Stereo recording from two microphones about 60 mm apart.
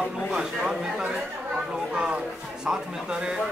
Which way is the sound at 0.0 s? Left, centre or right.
Centre.